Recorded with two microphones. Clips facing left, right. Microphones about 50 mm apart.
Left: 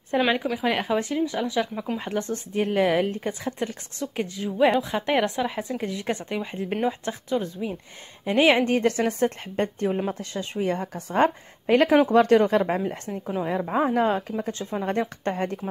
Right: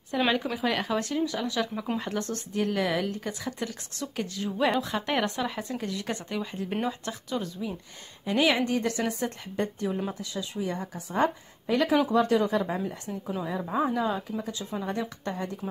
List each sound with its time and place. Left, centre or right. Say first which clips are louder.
0.3 s a woman's voice: left 3 dB; centre; by 12.1 s left
12.1 s speech: left 6 dB; left